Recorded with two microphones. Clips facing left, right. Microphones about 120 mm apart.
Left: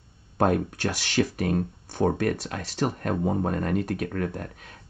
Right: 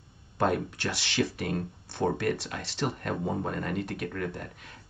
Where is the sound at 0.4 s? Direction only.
45° left (ahead or behind).